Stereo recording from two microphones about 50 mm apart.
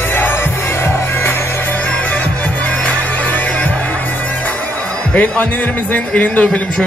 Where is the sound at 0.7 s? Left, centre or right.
Left.